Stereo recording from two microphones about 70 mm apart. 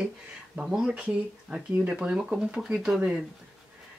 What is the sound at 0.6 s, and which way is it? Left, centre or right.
Speech, centre.